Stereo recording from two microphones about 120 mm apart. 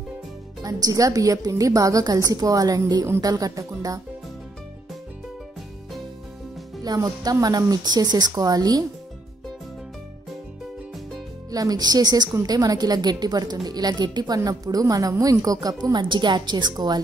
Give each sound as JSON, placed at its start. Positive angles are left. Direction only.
{"t": 0.6, "sound": "a woman's voice", "side_deg": -30}
{"t": 6.8, "sound": "a woman's voice", "side_deg": -35}
{"t": 11.5, "sound": "a woman's voice", "side_deg": -30}